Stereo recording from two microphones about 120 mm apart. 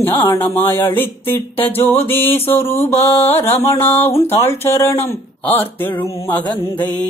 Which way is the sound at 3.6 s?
20° left (ahead or behind).